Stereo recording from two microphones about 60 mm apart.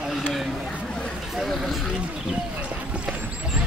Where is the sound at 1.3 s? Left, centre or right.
Centre.